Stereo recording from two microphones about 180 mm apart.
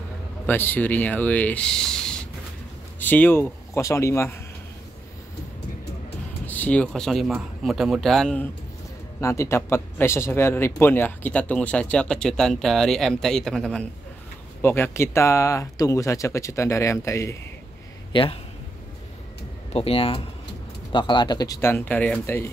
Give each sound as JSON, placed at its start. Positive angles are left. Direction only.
{"t": 0.5, "sound": "speech", "side_deg": 10}
{"t": 6.4, "sound": "speech", "side_deg": 10}
{"t": 9.2, "sound": "speech", "side_deg": 15}
{"t": 18.1, "sound": "a man's voice", "side_deg": 30}
{"t": 19.7, "sound": "speech", "side_deg": 30}